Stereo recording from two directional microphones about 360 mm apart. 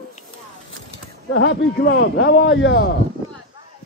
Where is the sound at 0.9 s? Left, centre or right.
Left.